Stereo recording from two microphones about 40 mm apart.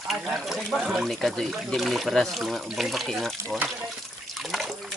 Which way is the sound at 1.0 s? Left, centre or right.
Centre.